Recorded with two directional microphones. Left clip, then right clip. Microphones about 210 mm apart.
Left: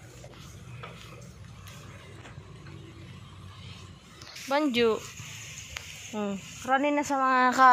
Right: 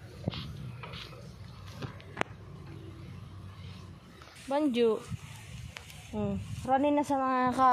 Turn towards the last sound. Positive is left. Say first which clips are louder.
# left 6 dB
turn(degrees=0)  # may be behind; listen again after turning